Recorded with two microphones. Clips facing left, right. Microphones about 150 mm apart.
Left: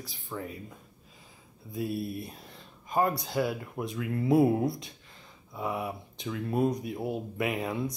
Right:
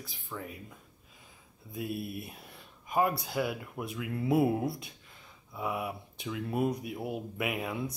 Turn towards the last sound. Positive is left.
turn(degrees=-5)  # may be behind; listen again after turning